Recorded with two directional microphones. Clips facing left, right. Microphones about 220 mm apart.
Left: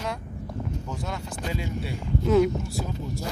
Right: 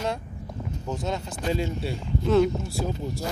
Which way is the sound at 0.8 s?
20° right (ahead or behind).